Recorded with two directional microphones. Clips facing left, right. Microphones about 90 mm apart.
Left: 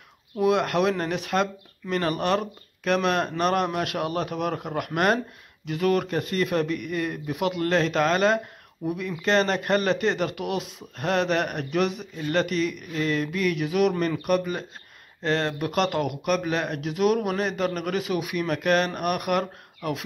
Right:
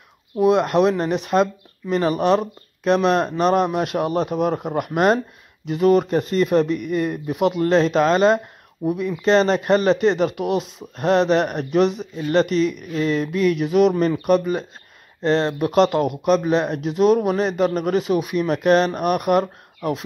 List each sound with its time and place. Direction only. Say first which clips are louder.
0.4 s speech: right 6 dB; 25° right (ahead or behind)